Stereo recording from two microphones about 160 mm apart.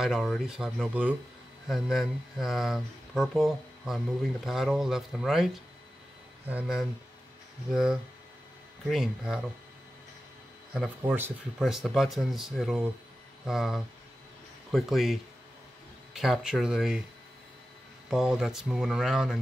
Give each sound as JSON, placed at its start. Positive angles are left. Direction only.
{"t": 0.0, "sound": "speech", "side_deg": 0}
{"t": 10.7, "sound": "speech", "side_deg": -5}
{"t": 18.1, "sound": "speech", "side_deg": -5}